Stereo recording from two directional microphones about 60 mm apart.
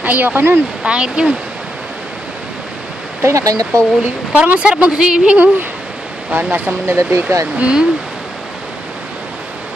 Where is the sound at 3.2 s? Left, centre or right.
Right.